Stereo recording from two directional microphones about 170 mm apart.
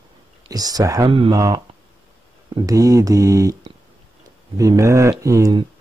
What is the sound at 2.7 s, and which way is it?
Speech, 20° right (ahead or behind).